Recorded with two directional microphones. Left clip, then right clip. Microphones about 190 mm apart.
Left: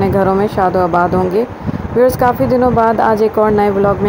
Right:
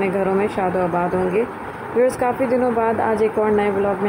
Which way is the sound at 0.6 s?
20° left (ahead or behind).